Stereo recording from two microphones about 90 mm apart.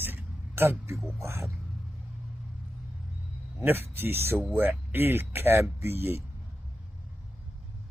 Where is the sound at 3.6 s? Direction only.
25° right (ahead or behind).